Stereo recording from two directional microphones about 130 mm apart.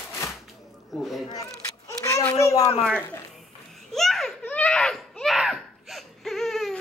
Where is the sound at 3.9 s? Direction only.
Centre (ahead or behind).